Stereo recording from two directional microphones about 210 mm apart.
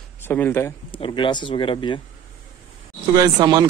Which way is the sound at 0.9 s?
25° left (ahead or behind).